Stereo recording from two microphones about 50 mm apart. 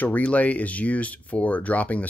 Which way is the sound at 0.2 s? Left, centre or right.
Left.